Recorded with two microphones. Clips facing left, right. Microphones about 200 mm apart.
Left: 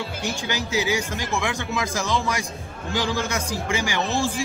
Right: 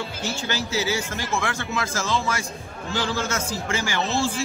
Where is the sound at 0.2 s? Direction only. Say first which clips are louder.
Even; 15° left (ahead or behind).